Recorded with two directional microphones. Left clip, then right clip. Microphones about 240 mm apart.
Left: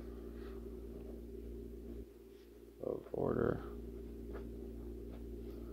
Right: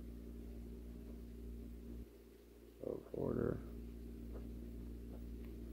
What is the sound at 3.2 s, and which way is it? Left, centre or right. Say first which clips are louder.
Speech: left 5 dB; centre.